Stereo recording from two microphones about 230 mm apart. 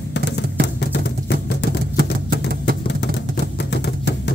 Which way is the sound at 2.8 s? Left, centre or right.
Left.